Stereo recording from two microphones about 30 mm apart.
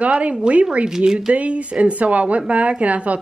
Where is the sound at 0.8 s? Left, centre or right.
Right.